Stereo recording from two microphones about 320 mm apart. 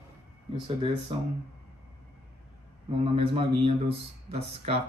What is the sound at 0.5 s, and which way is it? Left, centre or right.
Speech, centre.